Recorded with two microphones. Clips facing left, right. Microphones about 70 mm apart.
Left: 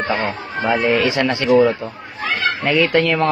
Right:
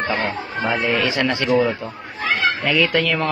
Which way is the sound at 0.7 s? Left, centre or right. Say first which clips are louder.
Left 4 dB; left.